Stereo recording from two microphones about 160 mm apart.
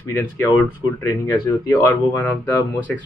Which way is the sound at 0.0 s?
15° left (ahead or behind).